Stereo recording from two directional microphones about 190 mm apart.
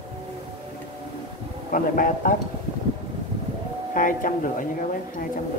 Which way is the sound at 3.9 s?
45° left (ahead or behind).